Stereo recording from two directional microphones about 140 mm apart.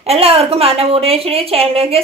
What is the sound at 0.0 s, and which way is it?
A woman's voice, 45° right (ahead or behind).